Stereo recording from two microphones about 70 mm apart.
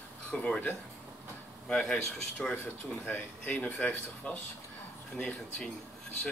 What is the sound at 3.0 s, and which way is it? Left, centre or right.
Speech, left.